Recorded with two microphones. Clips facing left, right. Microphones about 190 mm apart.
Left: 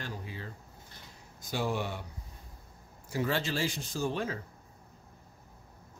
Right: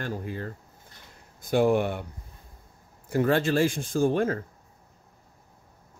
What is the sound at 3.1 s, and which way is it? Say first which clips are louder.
A man's voice: right 8 dB; 55° right (ahead or behind).